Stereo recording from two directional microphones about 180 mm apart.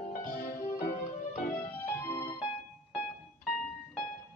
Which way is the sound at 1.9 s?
15° left (ahead or behind).